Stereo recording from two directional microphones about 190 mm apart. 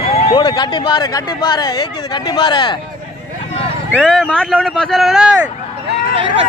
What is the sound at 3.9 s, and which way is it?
Speech, 5° left (ahead or behind).